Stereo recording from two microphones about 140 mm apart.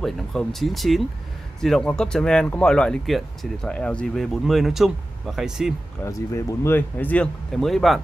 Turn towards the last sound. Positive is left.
turn(degrees=0)  # may be behind; listen again after turning